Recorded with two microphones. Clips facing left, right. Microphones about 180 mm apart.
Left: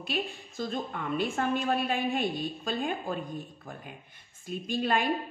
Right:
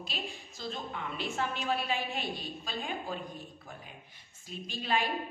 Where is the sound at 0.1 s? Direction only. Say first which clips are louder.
Left 10 dB; 55° left (ahead or behind).